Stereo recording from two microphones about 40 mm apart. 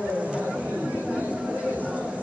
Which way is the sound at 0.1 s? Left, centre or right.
Right.